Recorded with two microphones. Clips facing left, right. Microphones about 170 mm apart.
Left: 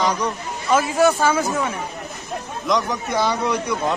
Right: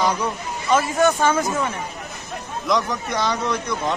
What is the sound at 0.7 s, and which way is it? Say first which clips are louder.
A man's voice: left 1 dB; 5° left (ahead or behind).